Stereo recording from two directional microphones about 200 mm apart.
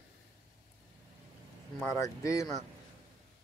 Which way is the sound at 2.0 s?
15° left (ahead or behind).